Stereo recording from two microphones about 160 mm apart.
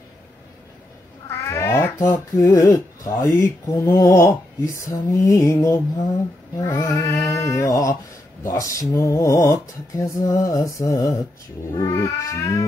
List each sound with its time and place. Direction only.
1.5 s speech: 15° left (ahead or behind)